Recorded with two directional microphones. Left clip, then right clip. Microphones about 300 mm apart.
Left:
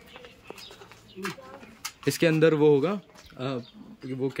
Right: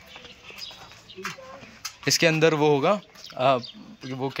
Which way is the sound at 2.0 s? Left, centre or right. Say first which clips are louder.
Right 2 dB; centre.